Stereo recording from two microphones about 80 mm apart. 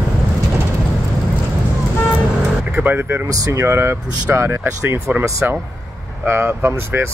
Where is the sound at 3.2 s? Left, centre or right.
Right.